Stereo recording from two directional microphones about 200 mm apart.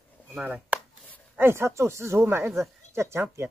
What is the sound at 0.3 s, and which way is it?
Speech, 5° right (ahead or behind).